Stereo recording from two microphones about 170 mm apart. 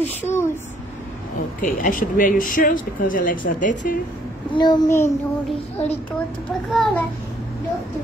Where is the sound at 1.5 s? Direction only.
50° left (ahead or behind).